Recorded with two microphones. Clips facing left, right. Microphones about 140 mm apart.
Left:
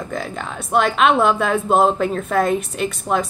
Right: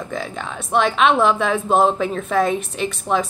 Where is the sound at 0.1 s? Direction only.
Centre (ahead or behind).